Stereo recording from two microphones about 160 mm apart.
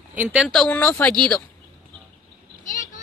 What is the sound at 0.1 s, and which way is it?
Speech, 10° right (ahead or behind).